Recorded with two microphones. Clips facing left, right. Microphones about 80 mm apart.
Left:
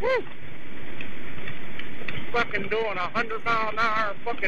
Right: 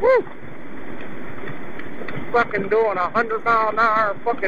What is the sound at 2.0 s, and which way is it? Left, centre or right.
A man's voice, right.